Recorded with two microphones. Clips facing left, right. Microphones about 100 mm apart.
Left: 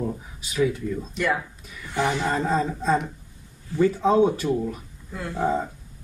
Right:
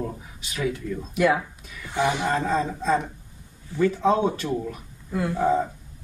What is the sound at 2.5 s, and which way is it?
Speech, 10° left (ahead or behind).